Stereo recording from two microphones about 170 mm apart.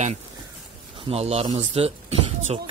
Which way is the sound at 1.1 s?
40° right (ahead or behind).